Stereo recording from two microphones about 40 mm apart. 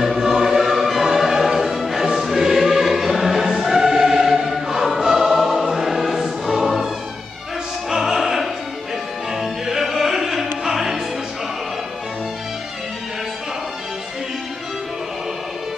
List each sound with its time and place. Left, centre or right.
0.0 s music: centre
7.9 s opera: centre
9.4 s music: centre